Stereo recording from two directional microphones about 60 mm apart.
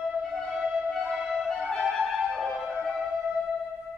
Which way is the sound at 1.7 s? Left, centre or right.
Centre.